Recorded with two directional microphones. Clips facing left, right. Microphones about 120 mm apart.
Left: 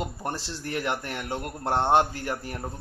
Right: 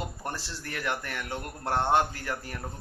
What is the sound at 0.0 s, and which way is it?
Speech, 25° left (ahead or behind).